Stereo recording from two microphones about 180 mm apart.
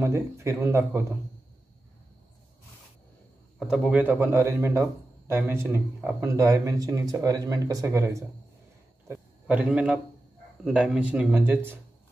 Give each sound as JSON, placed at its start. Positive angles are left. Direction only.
{"t": 0.0, "sound": "speech", "side_deg": -15}
{"t": 3.5, "sound": "speech", "side_deg": 0}
{"t": 9.0, "sound": "a sound", "side_deg": -10}
{"t": 10.6, "sound": "speech", "side_deg": -5}